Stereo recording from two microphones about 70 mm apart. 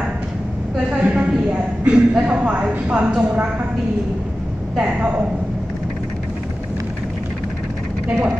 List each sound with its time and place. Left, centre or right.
0.8 s a woman's voice: centre
4.7 s a woman's voice: centre